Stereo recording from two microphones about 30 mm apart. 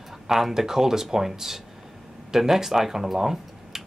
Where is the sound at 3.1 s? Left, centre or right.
Centre.